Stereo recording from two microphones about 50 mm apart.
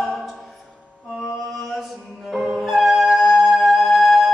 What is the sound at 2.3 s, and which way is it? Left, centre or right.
Music, centre.